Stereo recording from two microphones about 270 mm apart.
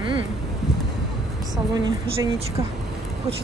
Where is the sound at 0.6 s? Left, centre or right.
Centre.